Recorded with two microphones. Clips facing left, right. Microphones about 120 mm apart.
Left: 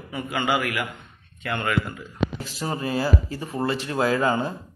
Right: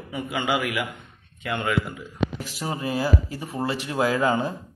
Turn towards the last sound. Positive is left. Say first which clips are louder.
# even
turn(degrees=-15)  # may be behind; listen again after turning